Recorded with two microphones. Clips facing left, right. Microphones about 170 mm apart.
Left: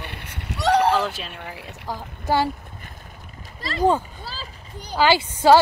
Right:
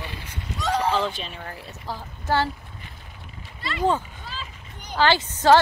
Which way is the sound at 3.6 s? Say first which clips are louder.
Left 4 dB; 35° left (ahead or behind).